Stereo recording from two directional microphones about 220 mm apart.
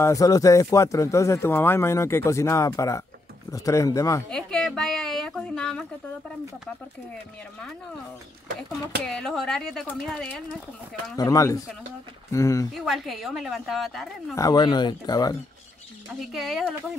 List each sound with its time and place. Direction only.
0.0 s speech: 15° left (ahead or behind)
4.3 s a woman's voice: 5° left (ahead or behind)
9.0 s speech: centre (ahead or behind)
11.1 s speech: 15° left (ahead or behind)
12.7 s speech: centre (ahead or behind)
14.3 s speech: 15° left (ahead or behind)
16.1 s speech: centre (ahead or behind)